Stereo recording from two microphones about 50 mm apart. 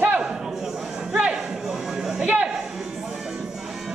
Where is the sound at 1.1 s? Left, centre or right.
Right.